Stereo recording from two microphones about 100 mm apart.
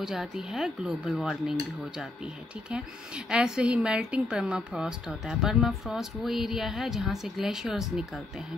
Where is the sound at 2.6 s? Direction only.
10° right (ahead or behind).